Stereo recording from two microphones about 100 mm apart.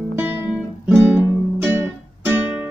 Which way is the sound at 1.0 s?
20° right (ahead or behind).